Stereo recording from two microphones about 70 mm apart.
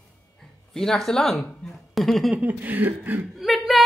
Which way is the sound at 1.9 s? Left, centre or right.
Centre.